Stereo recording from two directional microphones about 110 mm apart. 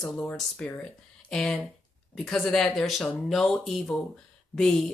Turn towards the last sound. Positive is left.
turn(degrees=5)  # may be behind; listen again after turning